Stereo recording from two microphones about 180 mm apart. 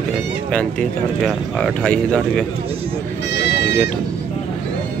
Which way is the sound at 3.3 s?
70° left (ahead or behind).